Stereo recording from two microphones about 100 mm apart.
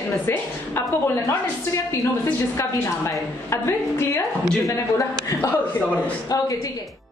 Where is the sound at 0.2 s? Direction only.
20° left (ahead or behind).